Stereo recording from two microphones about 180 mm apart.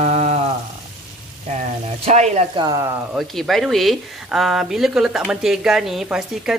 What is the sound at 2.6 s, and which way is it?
Speech, 20° right (ahead or behind).